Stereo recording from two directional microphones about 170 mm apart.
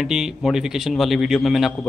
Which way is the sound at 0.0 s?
5° right (ahead or behind).